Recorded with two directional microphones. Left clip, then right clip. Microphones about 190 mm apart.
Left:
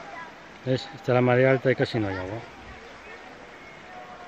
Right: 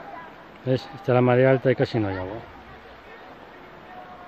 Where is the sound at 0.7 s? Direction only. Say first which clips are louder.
Right 2 dB; 5° right (ahead or behind).